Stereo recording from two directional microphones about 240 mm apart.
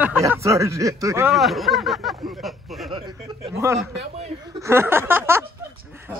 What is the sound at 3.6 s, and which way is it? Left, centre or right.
Speech, centre.